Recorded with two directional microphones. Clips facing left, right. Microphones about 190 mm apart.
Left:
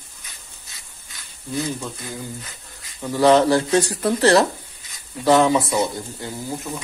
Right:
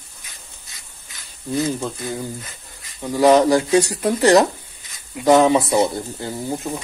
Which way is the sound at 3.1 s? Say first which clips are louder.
Right 1 dB; 10° right (ahead or behind).